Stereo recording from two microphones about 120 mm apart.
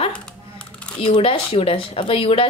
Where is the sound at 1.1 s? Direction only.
50° left (ahead or behind).